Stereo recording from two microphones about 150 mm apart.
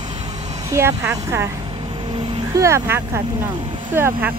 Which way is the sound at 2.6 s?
20° right (ahead or behind).